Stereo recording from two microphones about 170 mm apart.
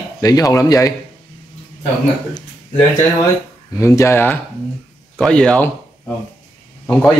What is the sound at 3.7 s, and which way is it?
A man's voice, 15° left (ahead or behind).